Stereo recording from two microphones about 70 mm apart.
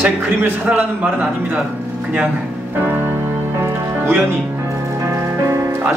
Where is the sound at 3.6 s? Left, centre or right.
Right.